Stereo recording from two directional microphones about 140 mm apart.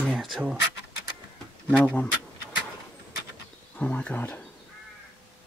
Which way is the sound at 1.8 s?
10° left (ahead or behind).